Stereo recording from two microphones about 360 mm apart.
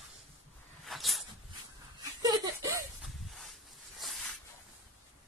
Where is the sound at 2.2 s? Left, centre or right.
Centre.